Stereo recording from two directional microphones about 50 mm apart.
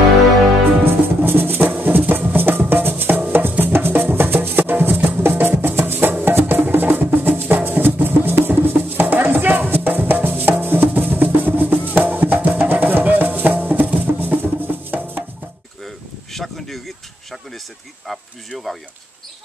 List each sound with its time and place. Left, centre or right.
1.2 s music: right
15.8 s a sound: centre
18.0 s insect: centre